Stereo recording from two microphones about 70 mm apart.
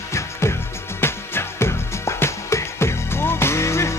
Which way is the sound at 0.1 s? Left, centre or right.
Left.